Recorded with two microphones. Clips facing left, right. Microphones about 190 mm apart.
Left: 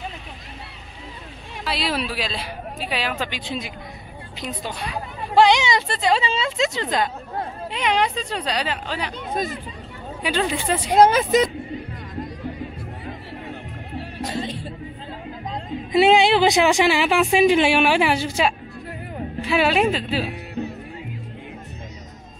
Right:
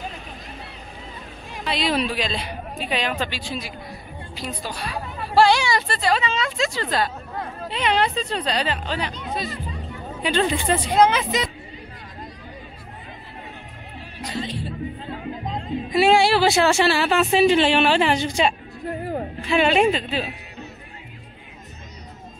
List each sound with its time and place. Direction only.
1.6 s a woman's voice: 5° left (ahead or behind)
3.3 s a woman's voice: 20° left (ahead or behind)
10.2 s a woman's voice: 5° left (ahead or behind)
11.1 s speech: 45° left (ahead or behind)
14.2 s music: 50° left (ahead or behind)
15.9 s a woman's voice: 20° left (ahead or behind)